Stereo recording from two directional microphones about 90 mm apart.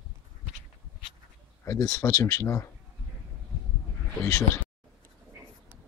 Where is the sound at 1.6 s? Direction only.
35° left (ahead or behind).